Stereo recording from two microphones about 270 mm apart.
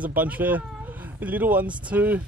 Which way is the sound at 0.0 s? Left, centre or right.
Centre.